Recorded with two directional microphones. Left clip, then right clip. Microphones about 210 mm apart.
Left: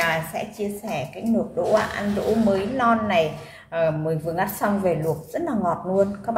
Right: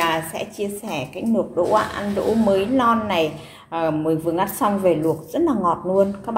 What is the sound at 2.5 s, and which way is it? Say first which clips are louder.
A woman's voice: right 4 dB; 20° right (ahead or behind).